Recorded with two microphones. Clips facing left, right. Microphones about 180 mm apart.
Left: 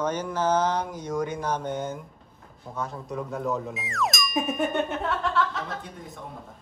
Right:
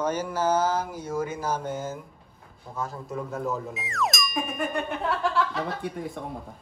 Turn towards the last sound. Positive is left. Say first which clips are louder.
# right 5 dB
turn(degrees=-65)  # may be behind; listen again after turning